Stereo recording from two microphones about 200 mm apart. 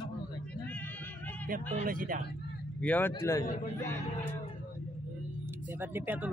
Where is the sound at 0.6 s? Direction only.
10° left (ahead or behind).